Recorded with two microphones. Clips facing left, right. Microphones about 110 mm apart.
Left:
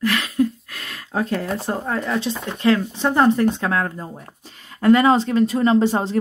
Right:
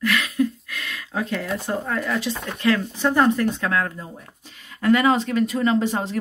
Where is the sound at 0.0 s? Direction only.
30° left (ahead or behind).